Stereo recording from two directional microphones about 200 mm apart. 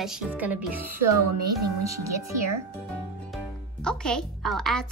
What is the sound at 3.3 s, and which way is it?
Music, 5° left (ahead or behind).